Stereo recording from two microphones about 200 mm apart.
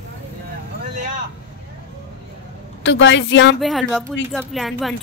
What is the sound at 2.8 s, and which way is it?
Speech, 65° left (ahead or behind).